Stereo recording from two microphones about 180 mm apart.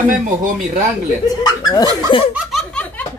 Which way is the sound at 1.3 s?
20° left (ahead or behind).